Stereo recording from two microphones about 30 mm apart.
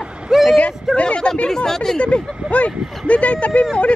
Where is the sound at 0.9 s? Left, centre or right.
Left.